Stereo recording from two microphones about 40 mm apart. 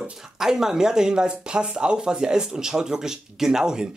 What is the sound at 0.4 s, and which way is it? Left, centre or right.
Speech, centre.